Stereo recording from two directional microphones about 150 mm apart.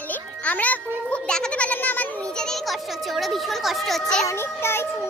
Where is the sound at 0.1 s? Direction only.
10° left (ahead or behind).